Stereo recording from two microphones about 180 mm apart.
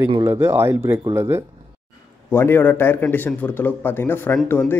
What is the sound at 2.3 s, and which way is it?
Speech, 10° left (ahead or behind).